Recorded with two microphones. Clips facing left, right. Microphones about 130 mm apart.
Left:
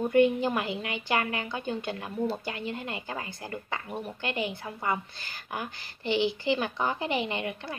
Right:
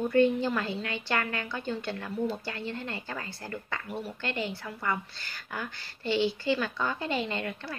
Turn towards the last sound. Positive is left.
turn(degrees=20)  # may be behind; listen again after turning